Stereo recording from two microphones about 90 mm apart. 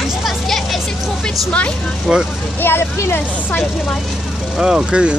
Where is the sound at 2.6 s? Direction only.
25° left (ahead or behind).